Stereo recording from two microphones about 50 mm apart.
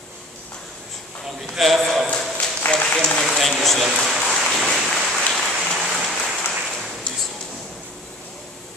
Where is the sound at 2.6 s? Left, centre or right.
Centre.